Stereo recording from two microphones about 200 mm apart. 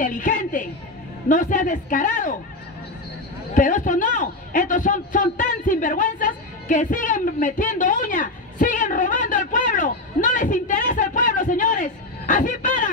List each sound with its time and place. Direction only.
0.0 s a man's voice: 40° left (ahead or behind)
3.5 s a man's voice: 40° left (ahead or behind)